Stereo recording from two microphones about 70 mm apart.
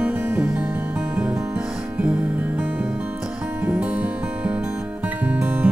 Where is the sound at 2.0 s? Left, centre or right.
Centre.